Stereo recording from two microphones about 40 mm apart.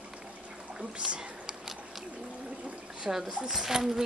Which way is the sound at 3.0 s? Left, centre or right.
Centre.